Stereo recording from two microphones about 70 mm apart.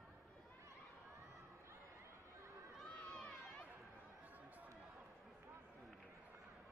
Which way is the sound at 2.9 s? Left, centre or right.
Centre.